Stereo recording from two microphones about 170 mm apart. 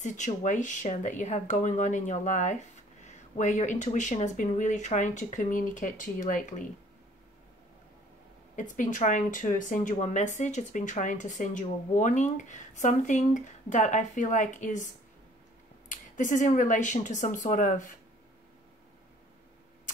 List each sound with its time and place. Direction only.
0.0 s speech: 45° left (ahead or behind)
8.5 s speech: 50° left (ahead or behind)
15.9 s speech: 50° left (ahead or behind)